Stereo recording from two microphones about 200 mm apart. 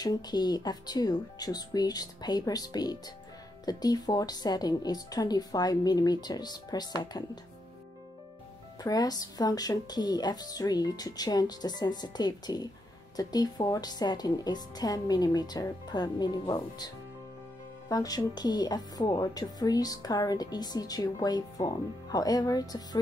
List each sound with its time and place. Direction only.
0.0 s speech: 20° left (ahead or behind)
8.8 s speech: 20° left (ahead or behind)